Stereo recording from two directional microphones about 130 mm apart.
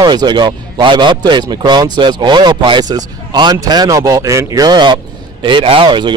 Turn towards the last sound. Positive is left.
turn(degrees=-35)  # may be behind; listen again after turning